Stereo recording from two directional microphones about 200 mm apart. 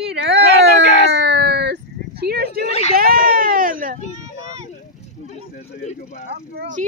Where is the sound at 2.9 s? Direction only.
45° right (ahead or behind).